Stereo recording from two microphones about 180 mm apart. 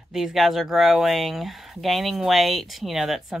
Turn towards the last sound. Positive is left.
turn(degrees=0)  # may be behind; listen again after turning